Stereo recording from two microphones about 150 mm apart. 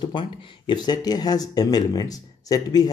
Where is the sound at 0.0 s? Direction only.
30° left (ahead or behind).